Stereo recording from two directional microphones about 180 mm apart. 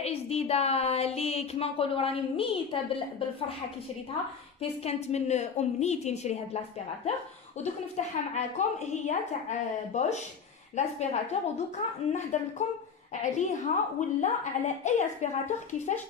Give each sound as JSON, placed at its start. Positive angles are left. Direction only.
{"t": 0.0, "sound": "a woman's voice", "side_deg": 35}
{"t": 4.6, "sound": "a woman's voice", "side_deg": 35}
{"t": 7.6, "sound": "a woman's voice", "side_deg": 40}